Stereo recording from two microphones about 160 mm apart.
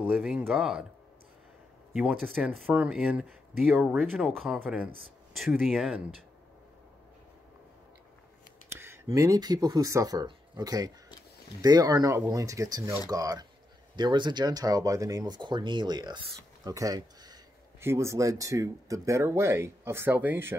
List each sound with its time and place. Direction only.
0.0 s speech: 5° right (ahead or behind)
2.0 s speech: 5° right (ahead or behind)
8.6 s speech: 15° right (ahead or behind)